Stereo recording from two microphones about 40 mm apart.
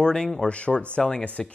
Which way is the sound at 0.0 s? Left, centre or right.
Left.